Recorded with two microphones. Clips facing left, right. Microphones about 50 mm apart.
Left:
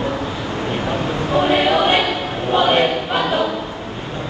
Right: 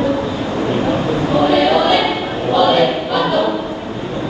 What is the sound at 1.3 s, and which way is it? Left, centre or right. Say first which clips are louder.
Choir: right 2 dB; left.